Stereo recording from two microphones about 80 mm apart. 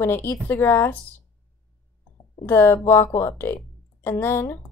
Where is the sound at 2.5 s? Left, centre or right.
Left.